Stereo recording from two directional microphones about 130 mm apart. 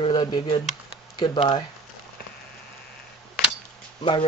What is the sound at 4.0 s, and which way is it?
Speech, 35° left (ahead or behind).